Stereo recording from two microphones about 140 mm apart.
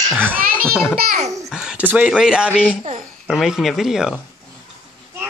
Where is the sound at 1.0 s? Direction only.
60° right (ahead or behind).